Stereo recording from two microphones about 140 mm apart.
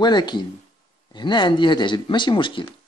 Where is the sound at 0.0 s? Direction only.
30° left (ahead or behind).